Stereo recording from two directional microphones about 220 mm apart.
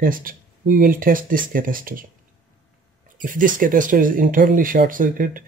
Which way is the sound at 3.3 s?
40° right (ahead or behind).